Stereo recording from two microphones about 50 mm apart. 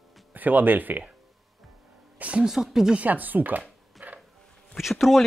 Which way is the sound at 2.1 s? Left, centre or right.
Right.